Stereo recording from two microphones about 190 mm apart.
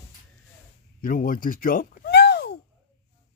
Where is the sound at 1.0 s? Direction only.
45° left (ahead or behind).